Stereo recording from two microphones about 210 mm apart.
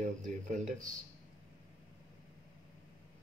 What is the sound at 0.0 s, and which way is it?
Speech, 40° right (ahead or behind).